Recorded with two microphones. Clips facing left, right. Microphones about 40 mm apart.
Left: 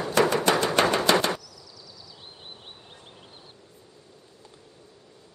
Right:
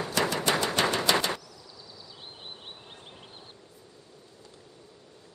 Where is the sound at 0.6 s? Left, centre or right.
Left.